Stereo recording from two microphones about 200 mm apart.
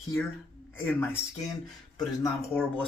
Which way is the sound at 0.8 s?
10° left (ahead or behind).